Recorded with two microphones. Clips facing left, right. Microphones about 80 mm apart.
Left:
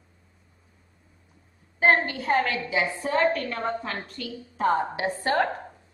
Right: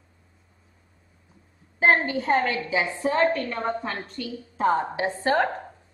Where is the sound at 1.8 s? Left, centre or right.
Centre.